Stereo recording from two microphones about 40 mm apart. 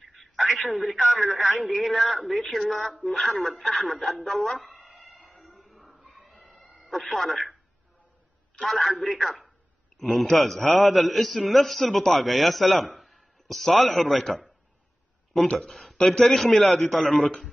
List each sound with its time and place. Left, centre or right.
0.0 s telephone: centre
0.5 s speech: centre
4.9 s a sound: centre
6.9 s speech: centre
8.6 s a man's voice: centre
15.7 s speech: centre